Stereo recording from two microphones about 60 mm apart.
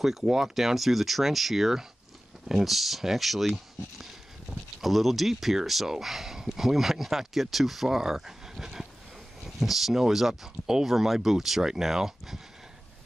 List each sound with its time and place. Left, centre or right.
0.0 s speech: centre